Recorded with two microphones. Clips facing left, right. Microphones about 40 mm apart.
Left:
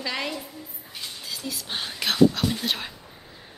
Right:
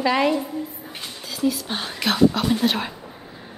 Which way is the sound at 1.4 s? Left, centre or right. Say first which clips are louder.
Right 10 dB; centre.